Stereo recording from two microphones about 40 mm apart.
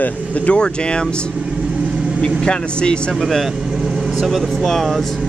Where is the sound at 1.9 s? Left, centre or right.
Right.